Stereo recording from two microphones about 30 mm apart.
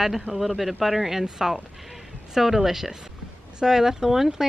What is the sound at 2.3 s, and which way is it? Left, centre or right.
A woman's voice, centre.